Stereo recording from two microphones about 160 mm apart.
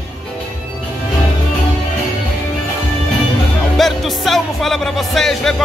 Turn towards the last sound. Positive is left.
turn(degrees=0)  # may be behind; listen again after turning